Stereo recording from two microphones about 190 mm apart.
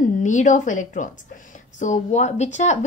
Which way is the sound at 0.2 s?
40° left (ahead or behind).